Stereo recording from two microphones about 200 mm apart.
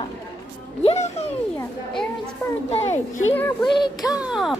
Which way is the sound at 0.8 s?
35° left (ahead or behind).